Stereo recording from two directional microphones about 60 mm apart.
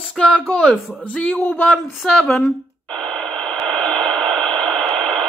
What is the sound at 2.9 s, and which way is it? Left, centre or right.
Radio, centre.